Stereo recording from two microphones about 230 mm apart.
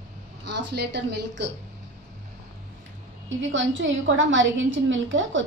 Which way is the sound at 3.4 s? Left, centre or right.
Right.